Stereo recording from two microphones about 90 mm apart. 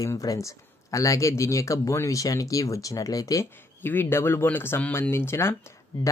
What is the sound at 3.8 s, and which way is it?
A man's voice, 25° left (ahead or behind).